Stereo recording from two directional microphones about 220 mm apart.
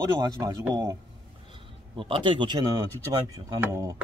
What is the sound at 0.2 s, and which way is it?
Speech, 15° right (ahead or behind).